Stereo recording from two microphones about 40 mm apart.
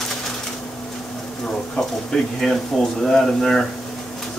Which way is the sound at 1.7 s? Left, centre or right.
Centre.